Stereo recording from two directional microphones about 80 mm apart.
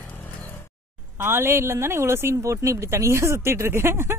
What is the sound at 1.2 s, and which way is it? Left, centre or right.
Speech, right.